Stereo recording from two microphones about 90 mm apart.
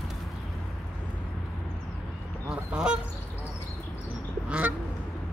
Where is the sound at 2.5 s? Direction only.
10° right (ahead or behind).